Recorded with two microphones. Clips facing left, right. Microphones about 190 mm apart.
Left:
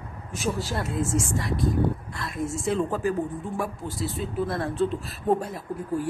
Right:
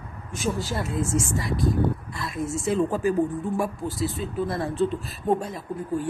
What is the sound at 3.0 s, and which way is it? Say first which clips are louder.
Speech: right 4 dB; 15° right (ahead or behind).